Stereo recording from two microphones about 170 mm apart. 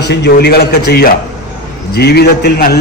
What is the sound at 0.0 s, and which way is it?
A man's voice, 85° left.